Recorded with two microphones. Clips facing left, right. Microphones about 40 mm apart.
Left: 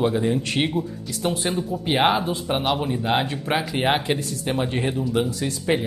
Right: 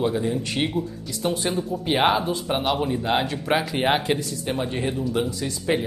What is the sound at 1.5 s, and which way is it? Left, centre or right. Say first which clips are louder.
A man's voice: even; centre.